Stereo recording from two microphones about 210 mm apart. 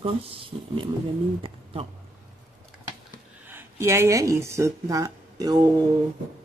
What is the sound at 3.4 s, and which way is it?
Speech, 10° right (ahead or behind).